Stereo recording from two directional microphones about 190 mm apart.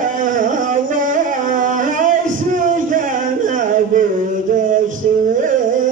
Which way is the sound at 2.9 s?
45° right (ahead or behind).